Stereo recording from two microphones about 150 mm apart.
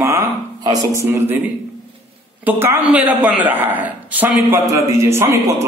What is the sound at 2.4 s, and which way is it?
A man's voice, 15° right (ahead or behind).